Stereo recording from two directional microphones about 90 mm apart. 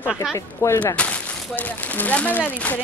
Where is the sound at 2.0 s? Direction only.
20° left (ahead or behind).